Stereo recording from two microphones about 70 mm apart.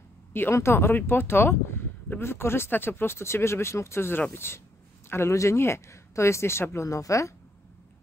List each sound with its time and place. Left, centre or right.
0.3 s speech: left